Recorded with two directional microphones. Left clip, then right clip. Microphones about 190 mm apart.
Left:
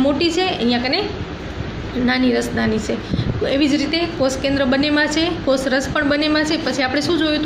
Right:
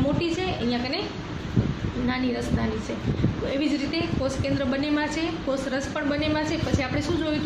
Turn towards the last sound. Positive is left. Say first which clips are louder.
# left 9 dB
turn(degrees=40)  # may be behind; listen again after turning